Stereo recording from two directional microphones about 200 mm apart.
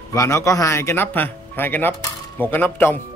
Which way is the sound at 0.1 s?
15° left (ahead or behind).